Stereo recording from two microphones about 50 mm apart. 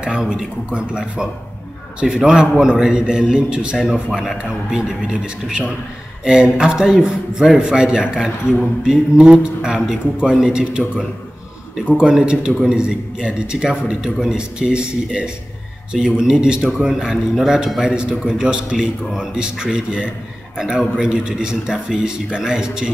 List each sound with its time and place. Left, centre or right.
0.0 s a sound: centre
0.7 s a man's voice: right
12.0 s a man's voice: centre
17.8 s a man's voice: centre